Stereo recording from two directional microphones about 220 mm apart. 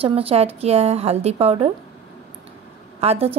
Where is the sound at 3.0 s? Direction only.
25° right (ahead or behind).